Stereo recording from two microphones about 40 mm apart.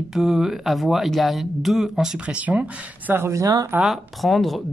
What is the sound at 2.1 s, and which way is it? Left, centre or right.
Speech, right.